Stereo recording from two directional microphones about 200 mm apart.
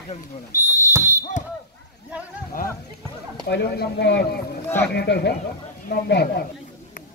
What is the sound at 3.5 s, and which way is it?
A man's voice, 55° left (ahead or behind).